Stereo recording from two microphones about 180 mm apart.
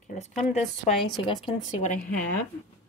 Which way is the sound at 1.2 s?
30° left (ahead or behind).